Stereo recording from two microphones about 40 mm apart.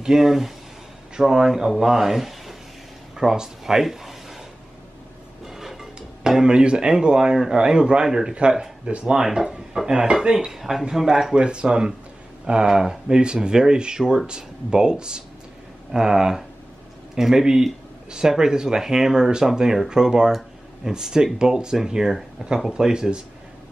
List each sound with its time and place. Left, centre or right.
0.0 s speech: centre
3.2 s a sound: centre
5.5 s a sound: centre
5.9 s music: centre
6.4 s a man's voice: right
10.3 s speech: centre
11.3 s a man's voice: right